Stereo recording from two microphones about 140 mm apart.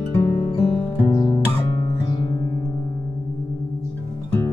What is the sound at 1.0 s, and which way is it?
Guitar, 15° left (ahead or behind).